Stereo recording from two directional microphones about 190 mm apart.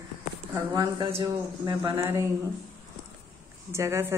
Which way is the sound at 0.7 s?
20° right (ahead or behind).